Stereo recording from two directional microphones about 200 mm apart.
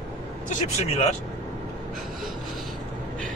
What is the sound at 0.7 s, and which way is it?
Speech, 35° left (ahead or behind).